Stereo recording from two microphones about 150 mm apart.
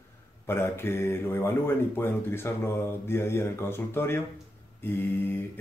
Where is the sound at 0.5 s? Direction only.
15° left (ahead or behind).